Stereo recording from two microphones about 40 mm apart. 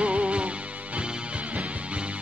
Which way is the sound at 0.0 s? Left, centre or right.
Right.